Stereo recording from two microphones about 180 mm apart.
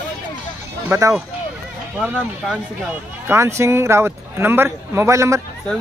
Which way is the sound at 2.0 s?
5° right (ahead or behind).